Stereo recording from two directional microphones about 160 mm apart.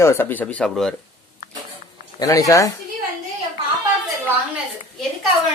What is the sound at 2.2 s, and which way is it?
Speech, 20° left (ahead or behind).